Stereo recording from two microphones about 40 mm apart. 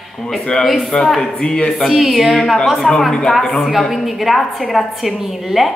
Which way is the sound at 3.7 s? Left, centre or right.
Centre.